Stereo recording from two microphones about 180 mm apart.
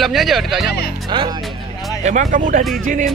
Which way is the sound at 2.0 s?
45° right (ahead or behind).